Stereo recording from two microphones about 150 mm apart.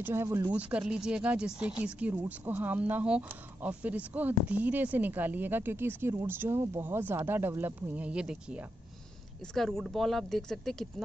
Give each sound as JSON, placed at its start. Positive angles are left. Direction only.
{"t": 0.0, "sound": "speech", "side_deg": -15}
{"t": 9.4, "sound": "speech", "side_deg": 5}